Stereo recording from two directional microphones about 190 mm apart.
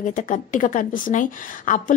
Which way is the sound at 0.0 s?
45° left (ahead or behind).